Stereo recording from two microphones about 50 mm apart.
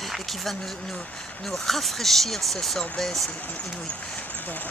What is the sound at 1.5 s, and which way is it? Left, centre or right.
Speech, centre.